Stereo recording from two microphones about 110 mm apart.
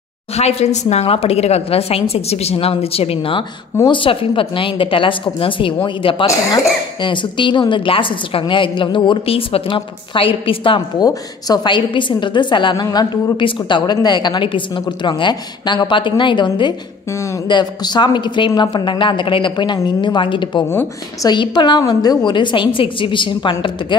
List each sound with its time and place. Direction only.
0.4 s a woman's voice: 70° left (ahead or behind); by 10.8 s 55° left (ahead or behind)
11.0 s a woman's voice: 35° left (ahead or behind)